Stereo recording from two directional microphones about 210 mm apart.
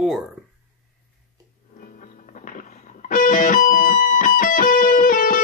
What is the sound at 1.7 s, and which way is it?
Music, 40° left (ahead or behind).